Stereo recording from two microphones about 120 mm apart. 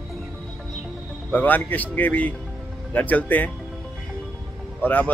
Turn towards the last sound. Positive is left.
turn(degrees=15)  # may be behind; listen again after turning